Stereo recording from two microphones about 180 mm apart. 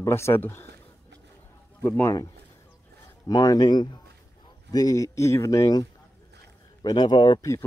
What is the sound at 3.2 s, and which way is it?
Speech, 20° left (ahead or behind).